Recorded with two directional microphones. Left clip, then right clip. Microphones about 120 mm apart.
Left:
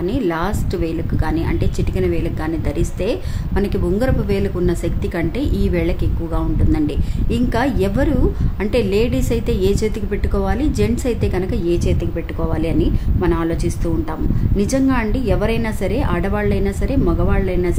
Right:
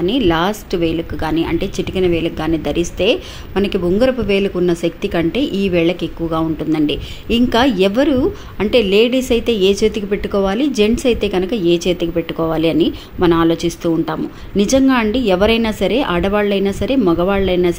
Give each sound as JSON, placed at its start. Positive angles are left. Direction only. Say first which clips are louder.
{"t": 0.0, "sound": "a woman's voice", "louder": "right 5 dB", "side_deg": -20}